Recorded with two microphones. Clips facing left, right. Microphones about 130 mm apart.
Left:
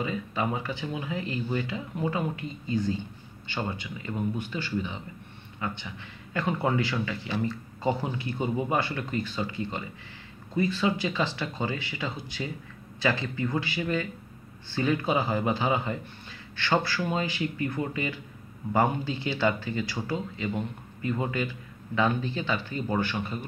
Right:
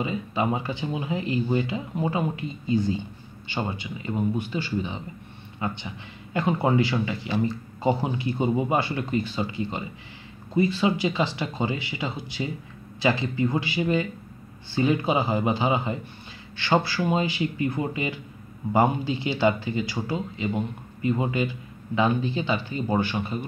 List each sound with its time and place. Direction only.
0.0 s a man's voice: 20° right (ahead or behind)